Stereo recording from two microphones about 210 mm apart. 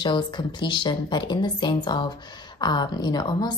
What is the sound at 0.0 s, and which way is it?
Speech, 20° left (ahead or behind).